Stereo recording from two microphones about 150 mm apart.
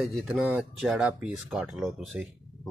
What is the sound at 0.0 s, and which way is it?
Speech, centre (ahead or behind).